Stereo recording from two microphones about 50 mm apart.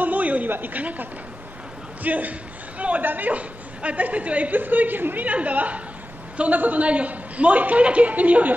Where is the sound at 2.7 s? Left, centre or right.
Right.